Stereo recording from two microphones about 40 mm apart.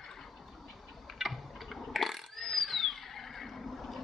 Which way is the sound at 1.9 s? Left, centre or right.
Centre.